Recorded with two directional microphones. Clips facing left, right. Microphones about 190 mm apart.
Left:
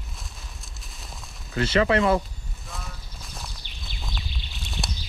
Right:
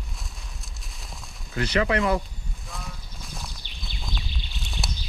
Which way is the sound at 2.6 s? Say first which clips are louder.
Even; centre (ahead or behind).